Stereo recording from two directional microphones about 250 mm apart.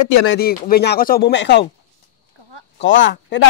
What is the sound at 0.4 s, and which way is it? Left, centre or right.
Speech, left.